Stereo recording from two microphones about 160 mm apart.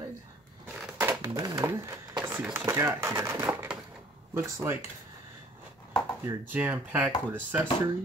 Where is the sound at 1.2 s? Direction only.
20° right (ahead or behind).